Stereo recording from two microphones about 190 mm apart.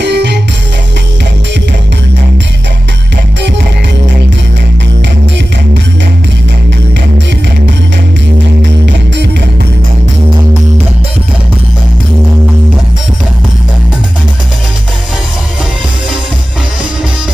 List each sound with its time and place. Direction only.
0.0 s music: 65° right (ahead or behind)